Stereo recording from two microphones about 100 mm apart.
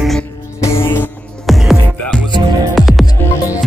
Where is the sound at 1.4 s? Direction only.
Centre (ahead or behind).